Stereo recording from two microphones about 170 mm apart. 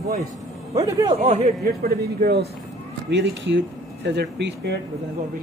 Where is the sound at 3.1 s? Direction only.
90° right.